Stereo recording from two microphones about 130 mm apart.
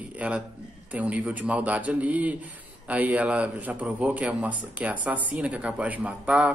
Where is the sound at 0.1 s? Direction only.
10° right (ahead or behind).